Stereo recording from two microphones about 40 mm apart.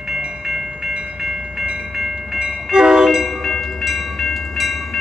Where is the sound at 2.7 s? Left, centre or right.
Right.